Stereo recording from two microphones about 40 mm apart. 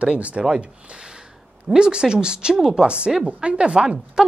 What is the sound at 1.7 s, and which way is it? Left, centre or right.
Speech, centre.